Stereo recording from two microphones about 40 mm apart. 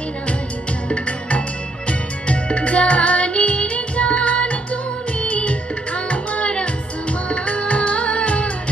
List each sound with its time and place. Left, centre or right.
0.8 s music: left